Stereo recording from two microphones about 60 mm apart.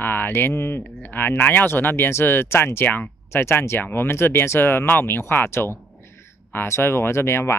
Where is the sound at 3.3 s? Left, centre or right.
Left.